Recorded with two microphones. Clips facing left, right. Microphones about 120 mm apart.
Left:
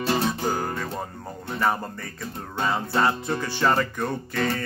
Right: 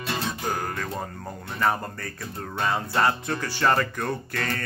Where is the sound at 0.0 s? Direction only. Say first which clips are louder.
Left 5 dB; 30° left (ahead or behind).